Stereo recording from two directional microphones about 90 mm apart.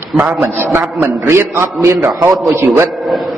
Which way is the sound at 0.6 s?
25° right (ahead or behind).